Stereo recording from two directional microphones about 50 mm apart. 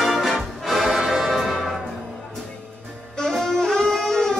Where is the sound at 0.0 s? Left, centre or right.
Centre.